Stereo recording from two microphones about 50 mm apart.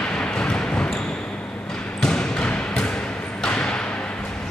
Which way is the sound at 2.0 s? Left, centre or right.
Centre.